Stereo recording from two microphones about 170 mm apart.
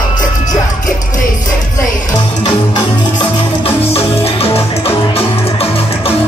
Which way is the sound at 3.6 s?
35° left (ahead or behind).